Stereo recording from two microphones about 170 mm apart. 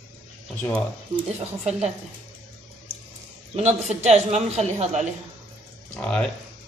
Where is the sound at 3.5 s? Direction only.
40° right (ahead or behind).